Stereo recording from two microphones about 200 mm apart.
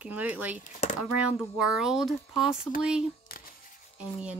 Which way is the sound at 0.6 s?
40° left (ahead or behind).